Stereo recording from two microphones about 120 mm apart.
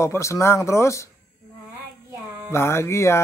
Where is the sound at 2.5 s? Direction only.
20° left (ahead or behind).